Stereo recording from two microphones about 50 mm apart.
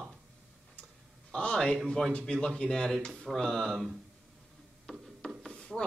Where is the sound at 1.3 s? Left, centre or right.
Centre.